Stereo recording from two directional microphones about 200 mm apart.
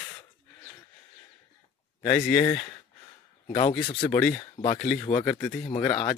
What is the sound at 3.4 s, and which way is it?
Speech, 30° left (ahead or behind).